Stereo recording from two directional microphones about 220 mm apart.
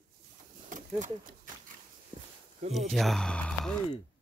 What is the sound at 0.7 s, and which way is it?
Speech, 35° right (ahead or behind).